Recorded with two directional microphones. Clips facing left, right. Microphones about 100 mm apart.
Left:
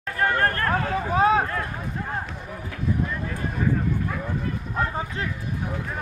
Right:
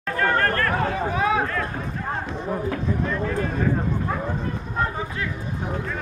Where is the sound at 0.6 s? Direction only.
35° left (ahead or behind).